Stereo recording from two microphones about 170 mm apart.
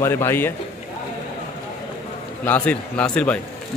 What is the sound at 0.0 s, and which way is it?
Speech, 15° left (ahead or behind).